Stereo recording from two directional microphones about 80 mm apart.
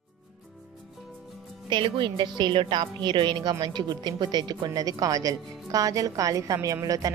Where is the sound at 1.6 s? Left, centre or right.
Right.